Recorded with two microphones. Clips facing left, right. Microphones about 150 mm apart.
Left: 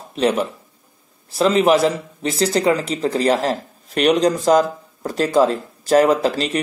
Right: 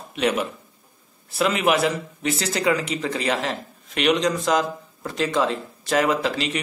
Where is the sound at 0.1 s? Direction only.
35° left (ahead or behind).